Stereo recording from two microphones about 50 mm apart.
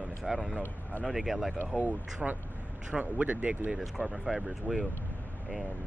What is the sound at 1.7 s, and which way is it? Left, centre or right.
Speech, right.